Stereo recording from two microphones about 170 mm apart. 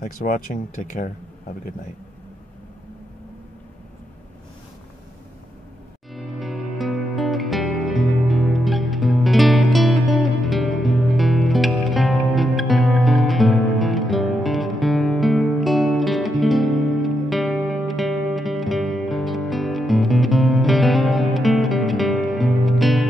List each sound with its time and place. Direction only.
0.0 s speech: 50° left (ahead or behind)
6.1 s music: centre (ahead or behind)